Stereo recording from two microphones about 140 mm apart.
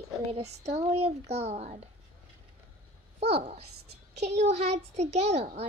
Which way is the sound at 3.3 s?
45° right (ahead or behind).